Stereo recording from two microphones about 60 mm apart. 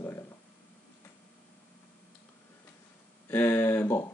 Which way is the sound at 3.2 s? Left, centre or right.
Left.